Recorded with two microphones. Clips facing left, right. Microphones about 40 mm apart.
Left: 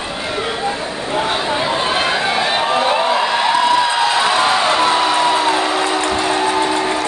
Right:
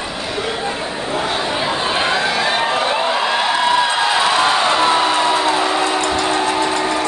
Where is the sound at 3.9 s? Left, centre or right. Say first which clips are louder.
Left 1 dB; centre.